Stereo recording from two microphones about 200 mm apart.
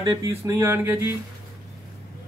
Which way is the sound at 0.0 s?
20° right (ahead or behind).